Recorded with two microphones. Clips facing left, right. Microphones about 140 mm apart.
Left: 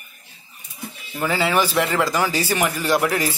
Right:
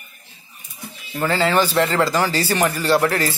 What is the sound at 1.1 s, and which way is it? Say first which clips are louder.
Speech: right 2 dB; 10° left (ahead or behind).